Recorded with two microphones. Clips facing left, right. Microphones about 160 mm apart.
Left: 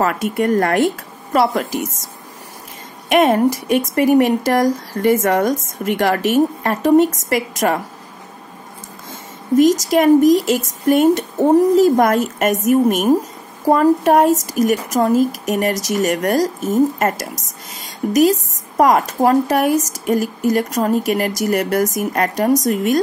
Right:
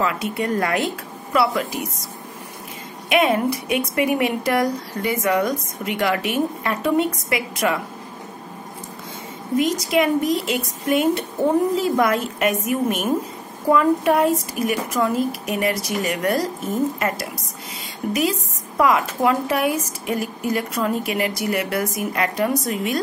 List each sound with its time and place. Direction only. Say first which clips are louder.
0.0 s speech: left 5 dB; 50° left (ahead or behind)
3.1 s speech: left 5 dB; 45° left (ahead or behind)
9.6 s speech: left 6 dB; 40° left (ahead or behind)